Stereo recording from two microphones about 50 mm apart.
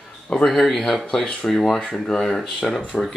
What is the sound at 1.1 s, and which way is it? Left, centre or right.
Speech, centre.